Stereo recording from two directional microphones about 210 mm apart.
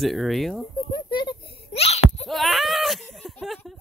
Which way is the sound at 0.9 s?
20° left (ahead or behind).